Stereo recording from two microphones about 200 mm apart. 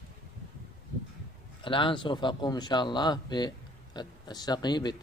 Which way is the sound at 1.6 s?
25° left (ahead or behind).